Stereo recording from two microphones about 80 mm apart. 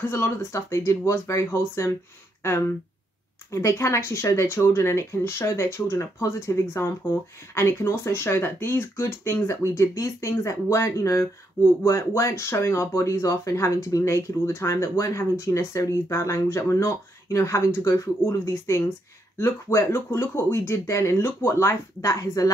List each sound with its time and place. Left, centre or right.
0.1 s speech: left
3.5 s speech: left